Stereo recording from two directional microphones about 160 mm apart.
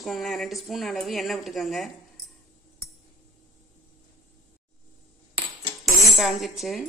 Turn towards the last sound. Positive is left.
turn(degrees=0)  # may be behind; listen again after turning